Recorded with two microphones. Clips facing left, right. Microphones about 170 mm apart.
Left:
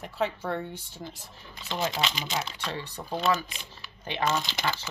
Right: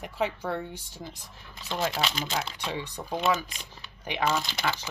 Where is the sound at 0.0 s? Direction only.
10° right (ahead or behind).